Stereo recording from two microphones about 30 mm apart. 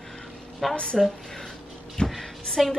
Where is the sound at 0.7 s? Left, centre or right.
Left.